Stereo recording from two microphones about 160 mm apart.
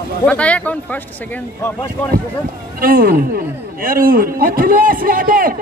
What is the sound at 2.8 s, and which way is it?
Speech, 65° right (ahead or behind).